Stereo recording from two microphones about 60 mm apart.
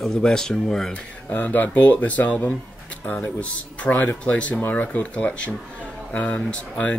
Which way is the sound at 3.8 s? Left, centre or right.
Left.